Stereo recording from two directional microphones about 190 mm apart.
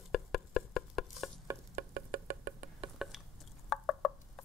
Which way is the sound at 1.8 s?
50° right (ahead or behind).